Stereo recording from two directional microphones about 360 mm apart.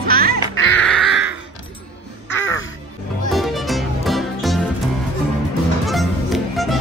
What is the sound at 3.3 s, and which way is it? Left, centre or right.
Music, centre.